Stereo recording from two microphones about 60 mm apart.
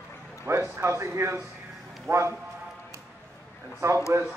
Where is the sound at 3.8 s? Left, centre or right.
Right.